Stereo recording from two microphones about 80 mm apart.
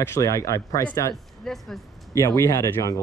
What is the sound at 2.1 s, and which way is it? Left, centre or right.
Speech, left.